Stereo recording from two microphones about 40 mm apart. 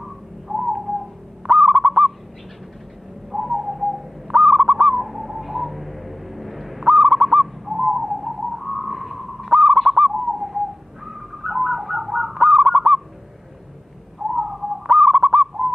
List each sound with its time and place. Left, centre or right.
0.0 s whistling: centre
1.5 s owl: centre
1.9 s owl: centre
3.3 s bird: centre
11.1 s fowl: centre
14.3 s bird: centre